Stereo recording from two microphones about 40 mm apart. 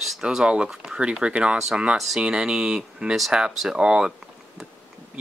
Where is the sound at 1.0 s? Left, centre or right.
Right.